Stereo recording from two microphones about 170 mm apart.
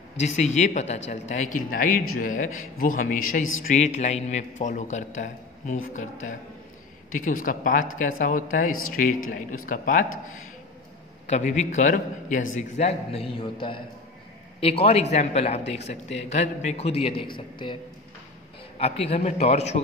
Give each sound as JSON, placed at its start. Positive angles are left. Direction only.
{"t": 0.2, "sound": "speech", "side_deg": 40}
{"t": 11.2, "sound": "a man's voice", "side_deg": 40}
{"t": 18.8, "sound": "a man's voice", "side_deg": 35}